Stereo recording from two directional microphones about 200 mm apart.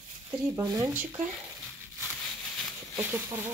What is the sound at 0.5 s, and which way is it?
Speech, 15° right (ahead or behind).